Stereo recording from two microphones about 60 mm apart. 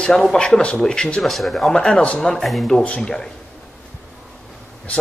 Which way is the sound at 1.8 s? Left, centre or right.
Centre.